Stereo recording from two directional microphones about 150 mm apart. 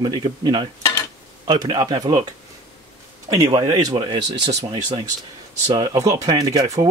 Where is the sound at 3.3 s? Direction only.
25° right (ahead or behind).